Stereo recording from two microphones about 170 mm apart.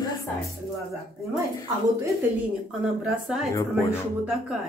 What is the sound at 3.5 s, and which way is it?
Speech, 15° left (ahead or behind).